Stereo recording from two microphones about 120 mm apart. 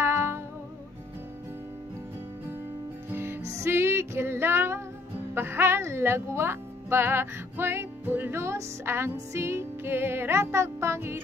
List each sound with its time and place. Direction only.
0.0 s music: 20° right (ahead or behind)
3.1 s music: 20° right (ahead or behind)
5.3 s speech: 20° right (ahead or behind)